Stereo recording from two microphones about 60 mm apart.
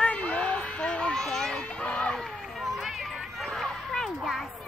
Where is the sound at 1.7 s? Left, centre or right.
Centre.